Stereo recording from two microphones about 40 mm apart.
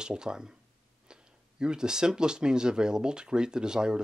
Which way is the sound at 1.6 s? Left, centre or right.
Centre.